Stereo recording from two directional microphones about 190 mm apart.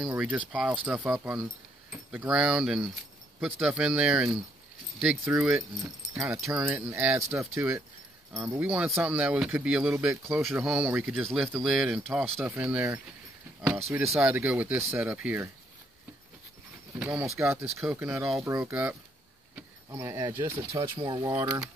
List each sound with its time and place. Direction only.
0.0 s speech: 5° right (ahead or behind)
10.0 s speech: centre (ahead or behind)
17.0 s speech: 5° right (ahead or behind)
21.0 s speech: 25° right (ahead or behind)
21.3 s speech: 10° right (ahead or behind)